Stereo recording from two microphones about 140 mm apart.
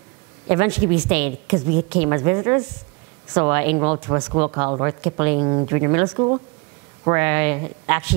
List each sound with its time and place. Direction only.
0.5 s a woman's voice: 15° right (ahead or behind)
6.0 s speech: 30° right (ahead or behind)
7.1 s a woman's voice: 15° right (ahead or behind)